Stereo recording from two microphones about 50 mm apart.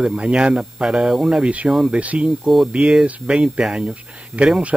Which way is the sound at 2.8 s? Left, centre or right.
Centre.